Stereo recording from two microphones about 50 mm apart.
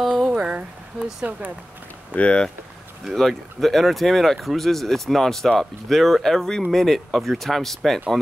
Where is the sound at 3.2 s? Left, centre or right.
Centre.